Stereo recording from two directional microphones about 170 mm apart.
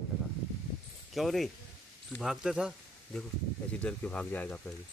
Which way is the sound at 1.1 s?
Centre (ahead or behind).